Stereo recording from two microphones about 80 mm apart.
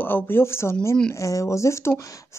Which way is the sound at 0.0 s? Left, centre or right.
Left.